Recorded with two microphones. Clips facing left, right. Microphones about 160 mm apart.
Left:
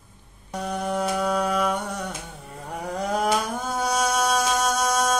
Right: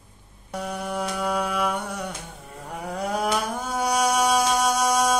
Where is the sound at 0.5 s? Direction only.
5° right (ahead or behind).